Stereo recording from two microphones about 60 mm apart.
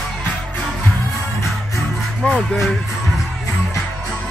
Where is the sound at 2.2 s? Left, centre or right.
Centre.